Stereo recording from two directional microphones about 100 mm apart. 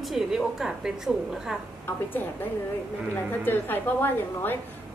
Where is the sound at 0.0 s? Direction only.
Centre (ahead or behind).